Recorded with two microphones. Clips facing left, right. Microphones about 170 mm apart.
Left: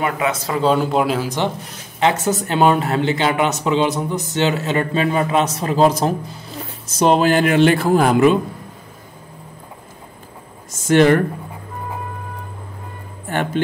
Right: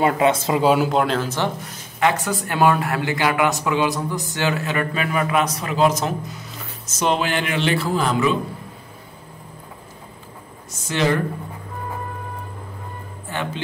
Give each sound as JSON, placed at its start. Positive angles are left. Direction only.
{"t": 0.0, "sound": "speech", "side_deg": -30}
{"t": 0.6, "sound": "speech", "side_deg": -10}
{"t": 0.9, "sound": "speech", "side_deg": 5}
{"t": 2.0, "sound": "a man's voice", "side_deg": 25}
{"t": 10.9, "sound": "speech", "side_deg": 55}